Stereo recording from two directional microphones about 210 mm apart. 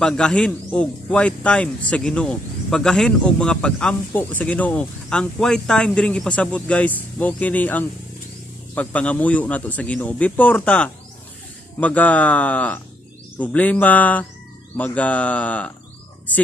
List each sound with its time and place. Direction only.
0.0 s speech: 5° left (ahead or behind)